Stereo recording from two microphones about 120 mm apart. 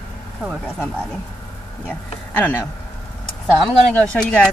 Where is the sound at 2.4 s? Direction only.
10° left (ahead or behind).